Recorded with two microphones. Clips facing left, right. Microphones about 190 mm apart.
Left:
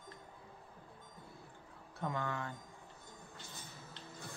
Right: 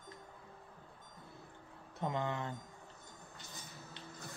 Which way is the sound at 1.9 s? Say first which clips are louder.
Right 2 dB; 20° right (ahead or behind).